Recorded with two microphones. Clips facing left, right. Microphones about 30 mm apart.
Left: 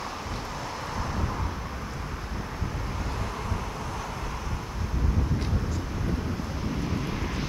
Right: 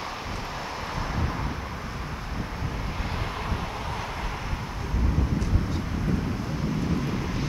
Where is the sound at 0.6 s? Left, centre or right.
Centre.